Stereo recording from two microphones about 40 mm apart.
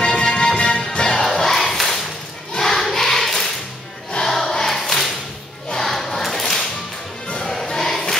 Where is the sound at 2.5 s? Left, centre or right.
Centre.